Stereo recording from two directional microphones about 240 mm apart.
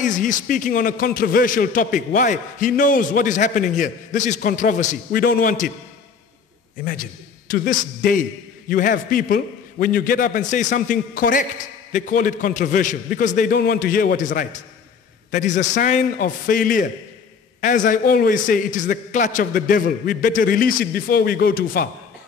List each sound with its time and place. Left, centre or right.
0.0 s a man's voice: left
6.8 s a man's voice: left